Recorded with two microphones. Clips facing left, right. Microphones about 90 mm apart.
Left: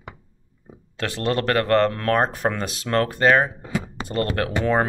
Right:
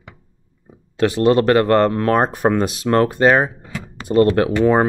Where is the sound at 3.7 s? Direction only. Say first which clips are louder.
Left 4 dB; 20° left (ahead or behind).